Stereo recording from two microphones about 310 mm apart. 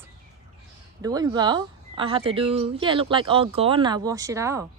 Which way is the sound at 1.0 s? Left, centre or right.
Centre.